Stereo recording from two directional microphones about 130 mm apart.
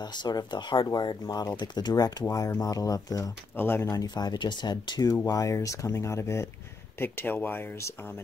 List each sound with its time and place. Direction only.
0.0 s speech: 35° left (ahead or behind)
3.5 s speech: 15° left (ahead or behind)
3.9 s speech: 30° left (ahead or behind)